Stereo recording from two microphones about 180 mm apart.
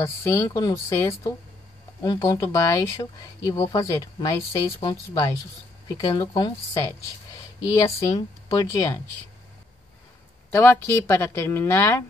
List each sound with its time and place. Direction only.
0.0 s a woman's voice: 15° left (ahead or behind)
7.8 s speech: 35° left (ahead or behind)
10.5 s a woman's voice: 10° left (ahead or behind)